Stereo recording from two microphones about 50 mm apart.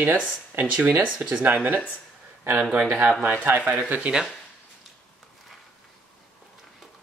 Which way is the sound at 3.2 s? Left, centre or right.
Right.